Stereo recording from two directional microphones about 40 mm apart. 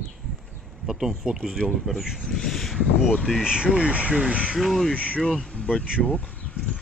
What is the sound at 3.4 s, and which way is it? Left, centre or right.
Speech, right.